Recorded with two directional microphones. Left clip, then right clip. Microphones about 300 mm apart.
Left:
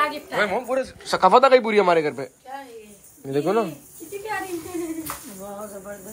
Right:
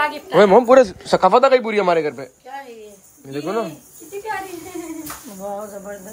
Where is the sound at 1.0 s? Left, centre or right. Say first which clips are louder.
Right 2 dB; centre.